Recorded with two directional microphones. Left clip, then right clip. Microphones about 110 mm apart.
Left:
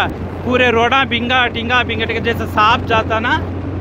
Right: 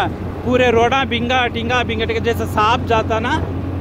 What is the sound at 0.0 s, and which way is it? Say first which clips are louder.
Speech: left 2 dB; 10° right (ahead or behind).